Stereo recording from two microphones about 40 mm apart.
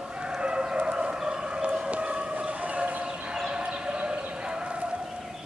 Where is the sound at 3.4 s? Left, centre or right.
Right.